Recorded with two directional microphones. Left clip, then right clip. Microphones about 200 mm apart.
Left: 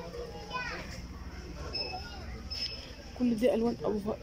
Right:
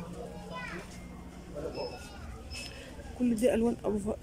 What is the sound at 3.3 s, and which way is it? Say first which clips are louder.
Speech: right 1 dB; 5° right (ahead or behind).